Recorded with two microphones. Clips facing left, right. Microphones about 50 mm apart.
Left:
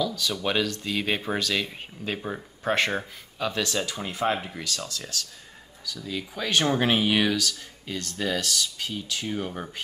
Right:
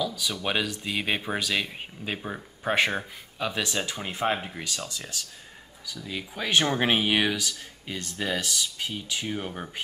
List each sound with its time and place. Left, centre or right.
0.0 s speech: centre